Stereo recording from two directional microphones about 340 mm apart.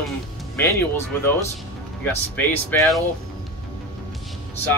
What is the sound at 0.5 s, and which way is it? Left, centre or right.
Speech, centre.